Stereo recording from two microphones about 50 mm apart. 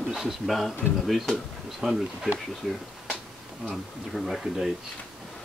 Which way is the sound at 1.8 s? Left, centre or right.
Centre.